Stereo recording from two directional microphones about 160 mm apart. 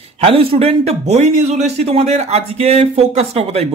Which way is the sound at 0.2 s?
35° right (ahead or behind).